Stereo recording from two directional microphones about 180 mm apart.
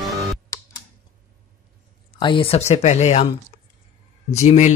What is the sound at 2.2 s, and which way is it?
Speech, 30° left (ahead or behind).